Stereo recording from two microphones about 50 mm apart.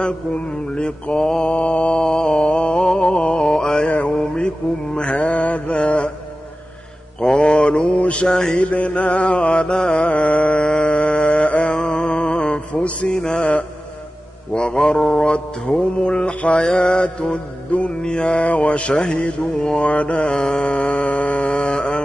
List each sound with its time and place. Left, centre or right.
0.0 s mantra: centre
2.7 s mantra: centre
4.9 s mantra: left
7.2 s mantra: left
8.3 s mantra: centre
8.5 s mantra: left
13.4 s mantra: left